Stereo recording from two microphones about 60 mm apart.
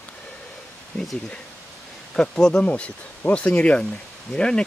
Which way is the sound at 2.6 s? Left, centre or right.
Left.